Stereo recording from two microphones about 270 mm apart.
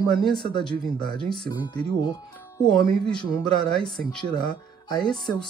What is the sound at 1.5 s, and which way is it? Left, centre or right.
Speech, centre.